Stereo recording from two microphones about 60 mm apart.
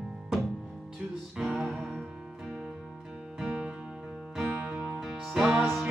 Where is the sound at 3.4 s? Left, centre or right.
Centre.